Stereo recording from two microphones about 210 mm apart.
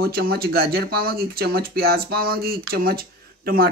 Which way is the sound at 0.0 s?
45° right (ahead or behind).